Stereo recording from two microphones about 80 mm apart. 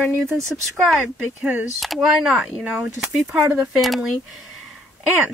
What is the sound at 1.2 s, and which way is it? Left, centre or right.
Speech, centre.